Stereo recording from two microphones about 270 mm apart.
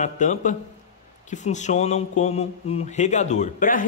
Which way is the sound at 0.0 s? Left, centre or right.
Left.